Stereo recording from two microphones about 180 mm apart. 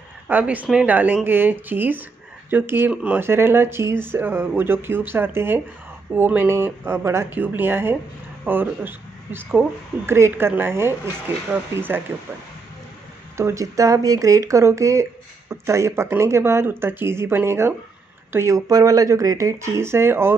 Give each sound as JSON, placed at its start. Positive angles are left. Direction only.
{"t": 0.3, "sound": "speech", "side_deg": -10}
{"t": 13.4, "sound": "speech", "side_deg": -15}